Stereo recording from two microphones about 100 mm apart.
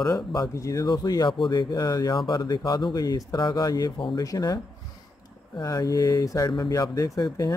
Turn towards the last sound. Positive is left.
turn(degrees=35)  # may be behind; listen again after turning